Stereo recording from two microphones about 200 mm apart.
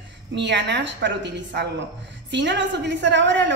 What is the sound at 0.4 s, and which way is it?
A woman's voice, 60° right (ahead or behind).